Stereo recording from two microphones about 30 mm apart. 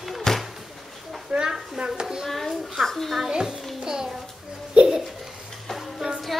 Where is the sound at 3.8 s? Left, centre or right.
Centre.